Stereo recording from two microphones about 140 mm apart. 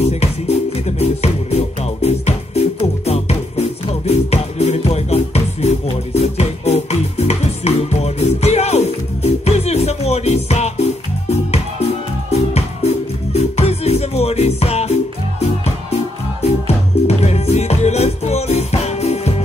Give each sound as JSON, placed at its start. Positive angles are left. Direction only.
{"t": 0.0, "sound": "music", "side_deg": 50}
{"t": 16.4, "sound": "music", "side_deg": 50}